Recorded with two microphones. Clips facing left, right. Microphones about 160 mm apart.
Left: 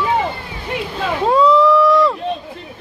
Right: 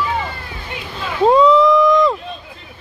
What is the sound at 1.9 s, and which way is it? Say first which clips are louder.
Run: even; 15° right (ahead or behind).